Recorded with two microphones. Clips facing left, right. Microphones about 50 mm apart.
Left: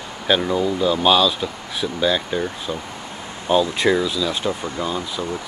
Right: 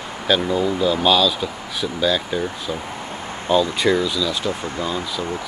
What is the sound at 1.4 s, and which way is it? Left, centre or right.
Speech, centre.